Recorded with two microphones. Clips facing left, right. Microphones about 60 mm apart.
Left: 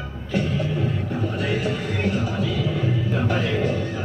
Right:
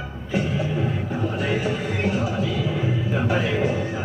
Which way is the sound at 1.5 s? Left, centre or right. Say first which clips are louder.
Right 1 dB; centre.